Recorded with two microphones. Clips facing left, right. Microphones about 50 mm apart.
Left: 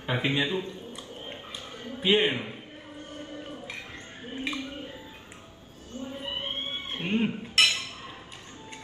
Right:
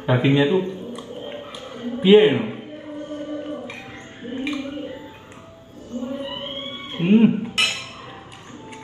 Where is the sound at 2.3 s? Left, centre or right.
Right.